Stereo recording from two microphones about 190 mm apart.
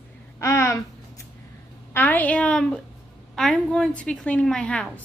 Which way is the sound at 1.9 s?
10° left (ahead or behind).